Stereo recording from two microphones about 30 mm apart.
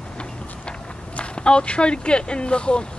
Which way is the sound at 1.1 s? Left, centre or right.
Left.